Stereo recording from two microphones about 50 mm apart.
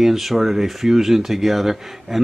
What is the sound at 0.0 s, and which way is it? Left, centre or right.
Speech, centre.